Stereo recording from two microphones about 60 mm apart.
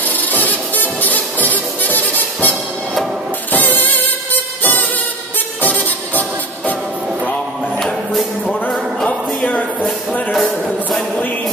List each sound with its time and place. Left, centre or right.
0.3 s music: left
3.5 s music: left
7.8 s music: centre
10.3 s music: centre